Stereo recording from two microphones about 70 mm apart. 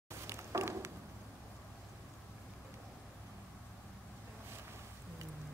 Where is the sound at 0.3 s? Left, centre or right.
Right.